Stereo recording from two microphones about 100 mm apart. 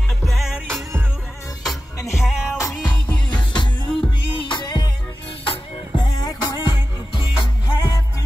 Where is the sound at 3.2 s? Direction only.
50° left (ahead or behind).